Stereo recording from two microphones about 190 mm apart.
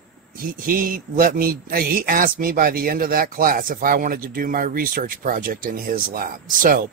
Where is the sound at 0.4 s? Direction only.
50° right (ahead or behind).